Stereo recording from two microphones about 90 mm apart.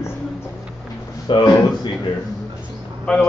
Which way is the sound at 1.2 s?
55° left (ahead or behind).